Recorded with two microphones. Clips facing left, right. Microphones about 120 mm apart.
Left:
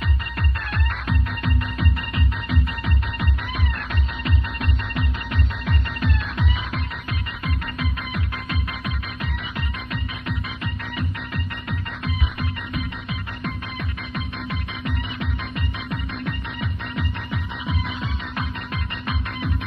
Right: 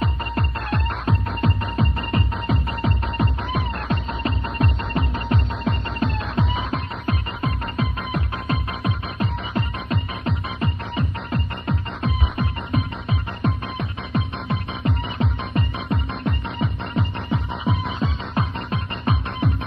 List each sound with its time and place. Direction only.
0.0 s music: 30° right (ahead or behind)